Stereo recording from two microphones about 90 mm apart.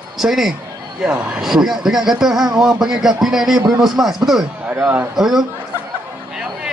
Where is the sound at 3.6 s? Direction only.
50° right (ahead or behind).